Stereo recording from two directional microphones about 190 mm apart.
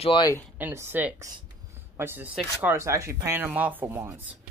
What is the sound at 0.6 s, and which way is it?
Speech, 10° right (ahead or behind).